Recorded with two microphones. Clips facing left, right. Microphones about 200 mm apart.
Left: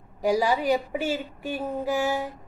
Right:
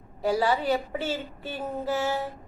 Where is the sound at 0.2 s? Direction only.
15° left (ahead or behind).